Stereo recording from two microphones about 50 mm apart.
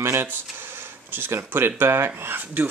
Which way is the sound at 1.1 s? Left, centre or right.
Right.